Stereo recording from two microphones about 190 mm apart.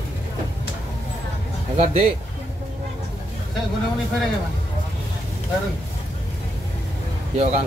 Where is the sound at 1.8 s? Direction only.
35° right (ahead or behind).